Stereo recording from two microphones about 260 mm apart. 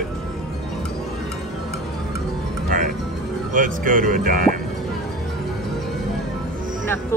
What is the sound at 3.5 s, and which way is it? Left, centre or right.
Speech, right.